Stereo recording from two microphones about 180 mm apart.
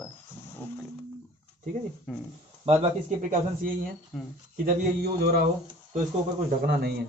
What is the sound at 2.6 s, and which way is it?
Speech, 30° right (ahead or behind).